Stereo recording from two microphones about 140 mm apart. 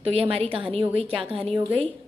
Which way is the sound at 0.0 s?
45° right (ahead or behind).